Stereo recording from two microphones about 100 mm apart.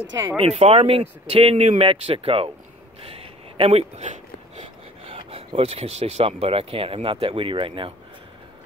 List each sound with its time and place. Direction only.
0.4 s speech: 90° right; by 2.5 s 65° right (ahead or behind)
3.2 s a sound: 75° right (ahead or behind)
5.6 s speech: 85° right; by 7.9 s 60° right (ahead or behind)